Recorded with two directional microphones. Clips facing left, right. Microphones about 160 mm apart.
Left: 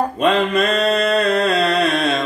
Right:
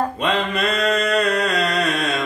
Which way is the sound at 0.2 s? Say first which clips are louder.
Left 9 dB; 40° left (ahead or behind).